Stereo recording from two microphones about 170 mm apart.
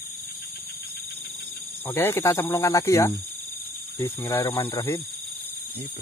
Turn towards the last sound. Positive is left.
turn(degrees=20)  # may be behind; listen again after turning